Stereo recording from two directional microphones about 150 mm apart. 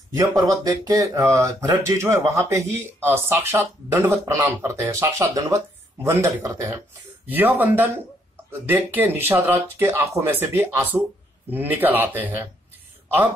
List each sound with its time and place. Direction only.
0.2 s speech: 25° right (ahead or behind)